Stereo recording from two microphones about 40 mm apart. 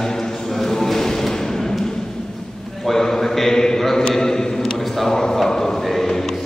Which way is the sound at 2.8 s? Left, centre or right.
Centre.